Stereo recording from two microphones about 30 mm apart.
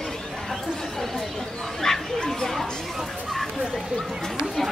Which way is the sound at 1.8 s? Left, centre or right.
Centre.